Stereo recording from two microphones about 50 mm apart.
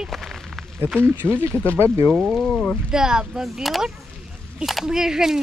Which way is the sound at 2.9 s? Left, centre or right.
Centre.